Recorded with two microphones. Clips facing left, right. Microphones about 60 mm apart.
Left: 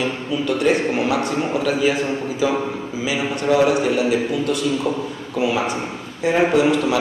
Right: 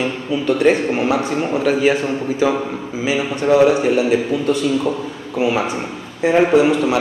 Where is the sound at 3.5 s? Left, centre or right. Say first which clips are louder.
Right 4 dB; right.